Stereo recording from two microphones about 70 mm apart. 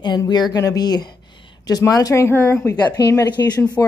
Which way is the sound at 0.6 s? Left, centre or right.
Left.